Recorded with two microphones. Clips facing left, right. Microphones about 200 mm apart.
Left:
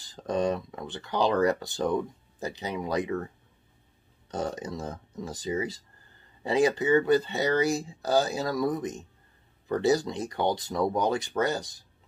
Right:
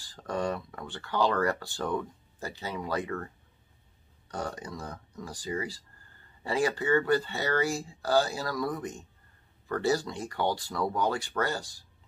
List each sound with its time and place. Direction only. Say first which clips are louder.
0.0 s speech: left 4 dB; 20° left (ahead or behind)
4.3 s speech: left 4 dB; 20° left (ahead or behind)